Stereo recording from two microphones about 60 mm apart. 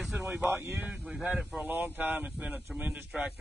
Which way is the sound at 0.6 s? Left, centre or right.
Right.